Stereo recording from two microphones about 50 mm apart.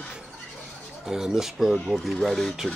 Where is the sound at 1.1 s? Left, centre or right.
Centre.